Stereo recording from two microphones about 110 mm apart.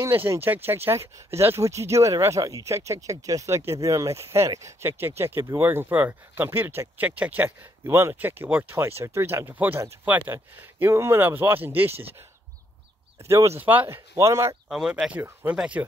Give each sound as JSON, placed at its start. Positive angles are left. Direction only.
{"t": 0.0, "sound": "speech", "side_deg": -25}
{"t": 14.7, "sound": "speech", "side_deg": -5}